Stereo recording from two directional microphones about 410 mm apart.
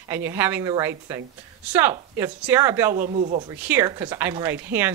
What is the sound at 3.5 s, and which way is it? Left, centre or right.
Speech, centre.